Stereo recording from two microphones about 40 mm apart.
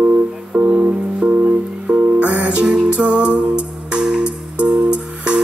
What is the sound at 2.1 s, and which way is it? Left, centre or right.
Music, right.